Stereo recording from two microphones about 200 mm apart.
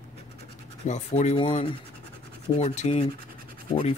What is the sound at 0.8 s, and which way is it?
Speech, 35° left (ahead or behind).